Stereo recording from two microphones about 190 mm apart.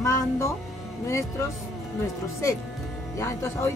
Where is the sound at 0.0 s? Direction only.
15° left (ahead or behind).